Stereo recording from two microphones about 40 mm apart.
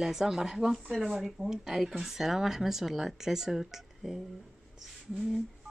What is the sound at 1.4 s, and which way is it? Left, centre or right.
Speech, centre.